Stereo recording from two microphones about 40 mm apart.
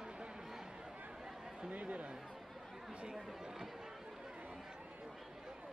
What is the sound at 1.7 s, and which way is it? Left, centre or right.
Speech, right.